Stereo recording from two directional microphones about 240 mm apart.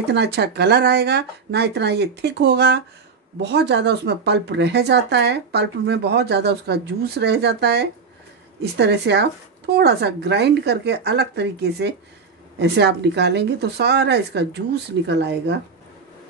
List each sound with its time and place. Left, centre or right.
0.1 s speech: right